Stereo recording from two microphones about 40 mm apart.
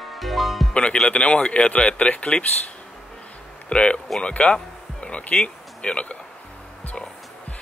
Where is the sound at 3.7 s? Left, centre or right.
Left.